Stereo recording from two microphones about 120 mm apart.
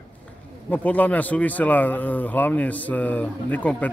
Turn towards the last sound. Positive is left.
turn(degrees=10)  # may be behind; listen again after turning